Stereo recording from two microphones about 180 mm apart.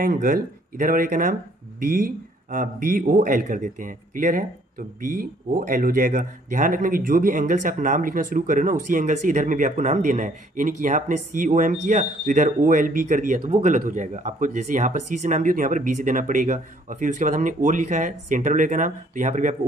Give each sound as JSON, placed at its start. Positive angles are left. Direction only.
{"t": 0.0, "sound": "speech", "side_deg": -50}